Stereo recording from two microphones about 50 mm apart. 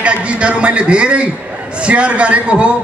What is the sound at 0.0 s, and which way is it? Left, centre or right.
A man's voice, right.